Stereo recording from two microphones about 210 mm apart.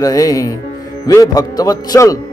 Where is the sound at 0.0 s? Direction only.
15° left (ahead or behind).